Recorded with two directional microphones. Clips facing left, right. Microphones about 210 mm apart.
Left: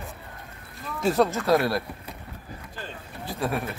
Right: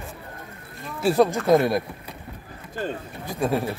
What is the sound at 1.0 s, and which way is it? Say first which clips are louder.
Speech: right 3 dB; 15° right (ahead or behind).